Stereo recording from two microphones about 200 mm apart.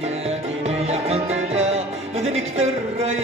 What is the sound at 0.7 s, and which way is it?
Music, 30° right (ahead or behind).